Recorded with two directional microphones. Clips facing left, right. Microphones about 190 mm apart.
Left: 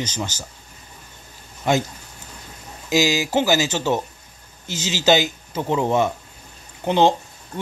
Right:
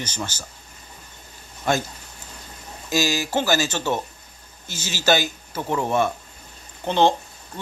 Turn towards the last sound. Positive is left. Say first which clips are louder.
# left 2 dB
turn(degrees=15)  # may be behind; listen again after turning